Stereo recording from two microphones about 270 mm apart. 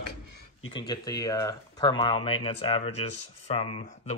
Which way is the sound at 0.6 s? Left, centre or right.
Centre.